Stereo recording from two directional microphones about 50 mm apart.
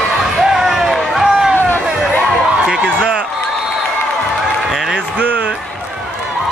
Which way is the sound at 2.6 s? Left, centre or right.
Centre.